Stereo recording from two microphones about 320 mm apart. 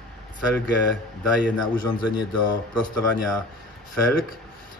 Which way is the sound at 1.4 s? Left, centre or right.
Centre.